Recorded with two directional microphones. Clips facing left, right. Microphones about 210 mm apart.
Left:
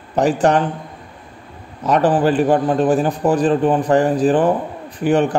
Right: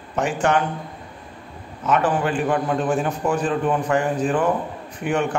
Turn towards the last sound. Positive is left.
turn(degrees=35)  # may be behind; listen again after turning